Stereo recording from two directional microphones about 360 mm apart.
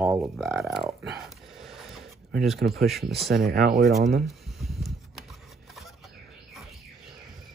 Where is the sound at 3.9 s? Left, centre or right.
Centre.